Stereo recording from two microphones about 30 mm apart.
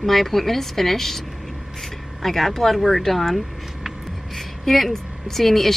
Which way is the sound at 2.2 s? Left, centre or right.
Centre.